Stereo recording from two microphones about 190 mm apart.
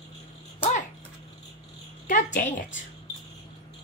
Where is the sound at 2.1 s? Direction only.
40° left (ahead or behind).